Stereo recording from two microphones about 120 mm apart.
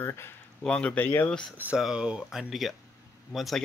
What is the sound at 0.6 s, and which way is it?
Speech, 10° left (ahead or behind).